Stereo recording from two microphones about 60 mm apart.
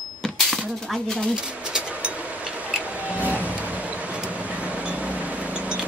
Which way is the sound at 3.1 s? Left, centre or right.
Right.